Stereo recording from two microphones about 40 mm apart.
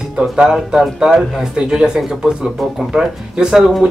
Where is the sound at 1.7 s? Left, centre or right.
Centre.